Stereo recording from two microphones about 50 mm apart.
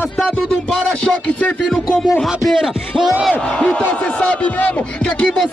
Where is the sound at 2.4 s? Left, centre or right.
Centre.